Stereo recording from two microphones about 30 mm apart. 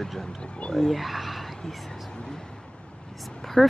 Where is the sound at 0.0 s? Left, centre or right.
Centre.